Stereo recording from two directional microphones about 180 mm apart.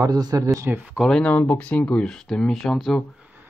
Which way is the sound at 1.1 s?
5° left (ahead or behind).